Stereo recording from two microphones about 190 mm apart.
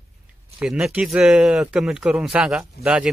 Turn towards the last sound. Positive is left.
turn(degrees=-5)  # may be behind; listen again after turning